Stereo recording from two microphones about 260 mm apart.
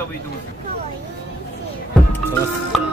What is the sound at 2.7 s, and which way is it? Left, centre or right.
Speech, centre.